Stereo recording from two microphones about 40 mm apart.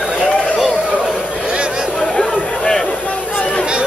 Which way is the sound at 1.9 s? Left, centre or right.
Centre.